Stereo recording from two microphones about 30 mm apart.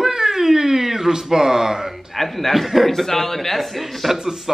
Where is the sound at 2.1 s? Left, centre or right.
Centre.